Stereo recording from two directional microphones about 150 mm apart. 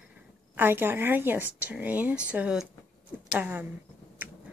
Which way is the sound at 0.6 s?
15° right (ahead or behind).